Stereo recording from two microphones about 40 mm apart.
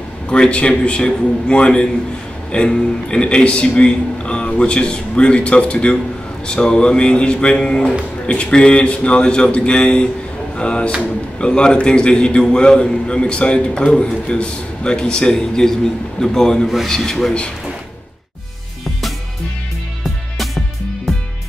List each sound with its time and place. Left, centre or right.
0.3 s a man's voice: left
16.6 s speech: centre
16.9 s speech: centre